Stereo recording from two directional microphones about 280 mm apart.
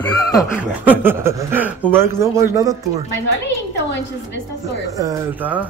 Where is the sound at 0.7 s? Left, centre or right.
Centre.